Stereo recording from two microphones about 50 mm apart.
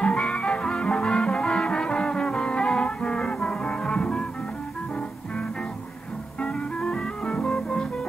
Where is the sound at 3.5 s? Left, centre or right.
Left.